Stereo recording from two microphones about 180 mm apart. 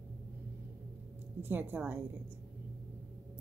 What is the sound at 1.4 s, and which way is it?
Speech, 10° right (ahead or behind).